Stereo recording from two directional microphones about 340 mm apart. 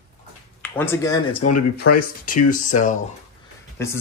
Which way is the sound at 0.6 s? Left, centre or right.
Centre.